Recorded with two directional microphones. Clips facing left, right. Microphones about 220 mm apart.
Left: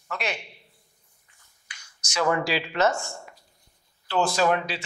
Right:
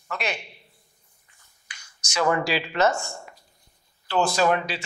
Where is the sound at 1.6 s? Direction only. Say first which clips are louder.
Right 1 dB; 20° right (ahead or behind).